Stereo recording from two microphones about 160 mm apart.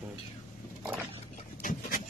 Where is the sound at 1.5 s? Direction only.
60° left (ahead or behind).